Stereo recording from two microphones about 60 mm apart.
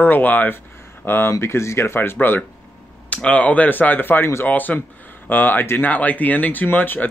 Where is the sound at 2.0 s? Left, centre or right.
Left.